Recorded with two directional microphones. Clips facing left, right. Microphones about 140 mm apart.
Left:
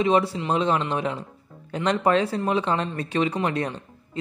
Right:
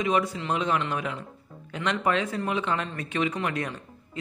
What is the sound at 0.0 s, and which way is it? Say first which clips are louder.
A man's voice: left 5 dB; 30° left (ahead or behind).